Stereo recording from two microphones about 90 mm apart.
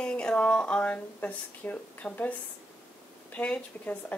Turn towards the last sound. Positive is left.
turn(degrees=15)  # may be behind; listen again after turning